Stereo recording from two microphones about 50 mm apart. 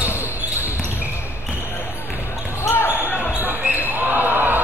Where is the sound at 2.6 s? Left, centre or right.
Left.